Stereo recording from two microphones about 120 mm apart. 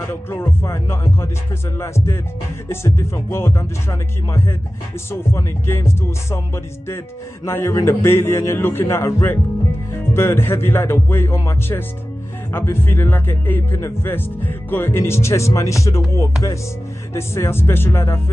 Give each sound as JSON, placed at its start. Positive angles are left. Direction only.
{"t": 0.1, "sound": "speech", "side_deg": 20}
{"t": 17.1, "sound": "speech", "side_deg": 25}